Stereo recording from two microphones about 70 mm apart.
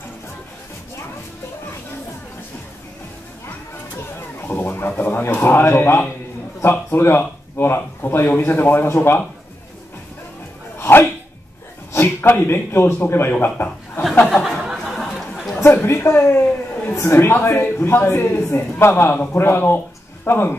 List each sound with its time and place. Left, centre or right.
4.5 s speech: left
10.8 s dog: left
11.9 s a man's voice: left
14.4 s chatter: centre
15.6 s speech: left